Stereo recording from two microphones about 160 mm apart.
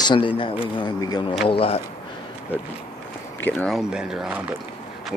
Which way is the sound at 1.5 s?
35° left (ahead or behind).